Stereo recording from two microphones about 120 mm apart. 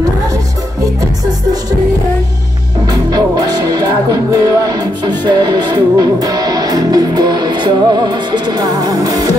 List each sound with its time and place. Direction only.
2.9 s music: 35° right (ahead or behind)